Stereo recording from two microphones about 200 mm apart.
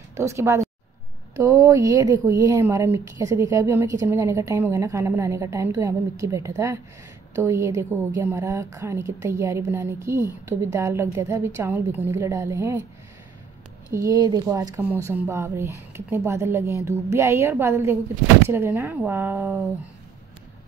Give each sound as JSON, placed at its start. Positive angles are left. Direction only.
{"t": 0.1, "sound": "a woman's voice", "side_deg": -15}
{"t": 13.9, "sound": "a woman's voice", "side_deg": -15}